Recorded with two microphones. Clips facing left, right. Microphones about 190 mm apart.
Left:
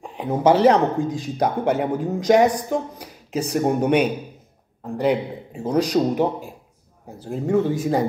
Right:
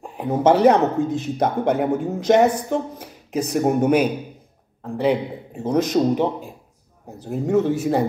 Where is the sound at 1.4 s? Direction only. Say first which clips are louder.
Even; 5° left (ahead or behind).